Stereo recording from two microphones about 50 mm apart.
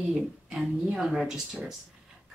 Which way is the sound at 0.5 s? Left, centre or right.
Centre.